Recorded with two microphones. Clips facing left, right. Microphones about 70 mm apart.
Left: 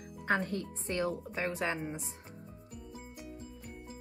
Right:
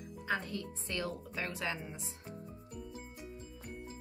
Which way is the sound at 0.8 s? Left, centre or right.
Left.